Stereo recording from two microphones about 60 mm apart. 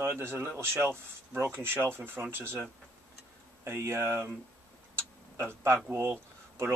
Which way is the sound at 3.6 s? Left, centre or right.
Right.